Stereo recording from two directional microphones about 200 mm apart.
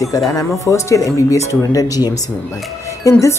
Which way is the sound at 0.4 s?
15° left (ahead or behind).